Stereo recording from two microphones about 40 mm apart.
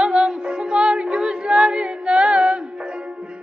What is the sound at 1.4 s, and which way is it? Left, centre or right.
Female singing, right.